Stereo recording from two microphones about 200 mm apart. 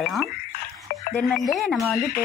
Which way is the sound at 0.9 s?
45° left (ahead or behind).